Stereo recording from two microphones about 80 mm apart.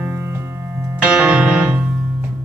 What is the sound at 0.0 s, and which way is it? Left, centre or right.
Music, right.